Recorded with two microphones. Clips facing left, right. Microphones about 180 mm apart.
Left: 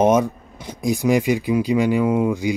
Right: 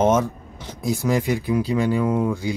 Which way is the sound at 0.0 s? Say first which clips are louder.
Left 2 dB; 15° left (ahead or behind).